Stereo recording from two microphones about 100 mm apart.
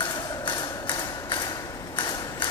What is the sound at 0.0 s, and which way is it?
Mechanisms, 45° left (ahead or behind).